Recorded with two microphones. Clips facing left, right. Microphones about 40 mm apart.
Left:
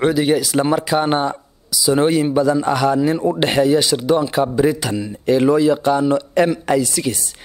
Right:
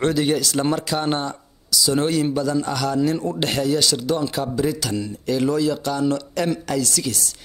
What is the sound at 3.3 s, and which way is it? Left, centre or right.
A man's voice, left.